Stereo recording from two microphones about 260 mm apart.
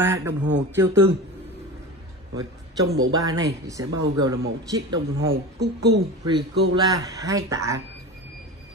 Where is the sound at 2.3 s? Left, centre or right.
Centre.